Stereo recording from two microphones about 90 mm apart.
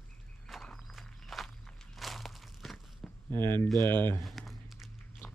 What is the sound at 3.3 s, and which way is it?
Speech, 55° right (ahead or behind).